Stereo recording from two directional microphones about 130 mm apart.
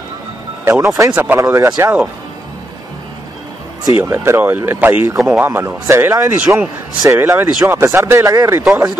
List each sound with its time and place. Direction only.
0.7 s a man's voice: 25° right (ahead or behind)
1.4 s speech: 25° right (ahead or behind)
3.9 s a man's voice: 15° right (ahead or behind)